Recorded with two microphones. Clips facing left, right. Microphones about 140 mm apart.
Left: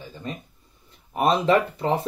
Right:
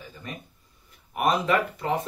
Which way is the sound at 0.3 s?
30° left (ahead or behind).